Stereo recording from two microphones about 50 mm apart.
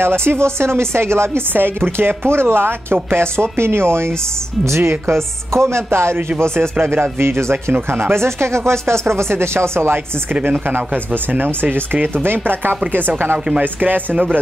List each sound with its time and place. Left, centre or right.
0.0 s speech: right
1.5 s speech: right
4.6 s speech: right
11.3 s speech: right